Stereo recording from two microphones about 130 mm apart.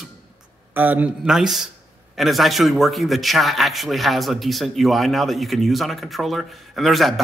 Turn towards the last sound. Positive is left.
turn(degrees=0)  # may be behind; listen again after turning